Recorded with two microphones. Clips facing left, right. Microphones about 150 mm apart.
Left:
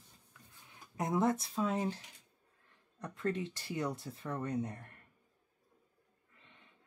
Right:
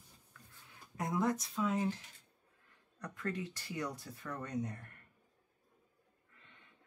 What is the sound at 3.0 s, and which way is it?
Speech, 25° left (ahead or behind).